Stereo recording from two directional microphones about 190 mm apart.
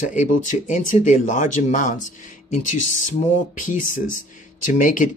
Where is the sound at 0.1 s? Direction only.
45° left (ahead or behind).